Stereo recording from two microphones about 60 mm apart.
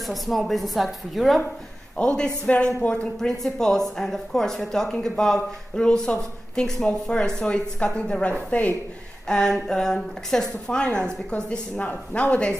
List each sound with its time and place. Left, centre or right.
0.0 s a woman's voice: centre
2.0 s a woman's voice: centre
3.2 s a woman's voice: centre; by 8.7 s left
9.3 s a woman's voice: centre